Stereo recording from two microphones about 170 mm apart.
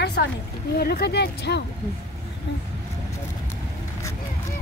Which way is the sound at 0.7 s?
70° left (ahead or behind).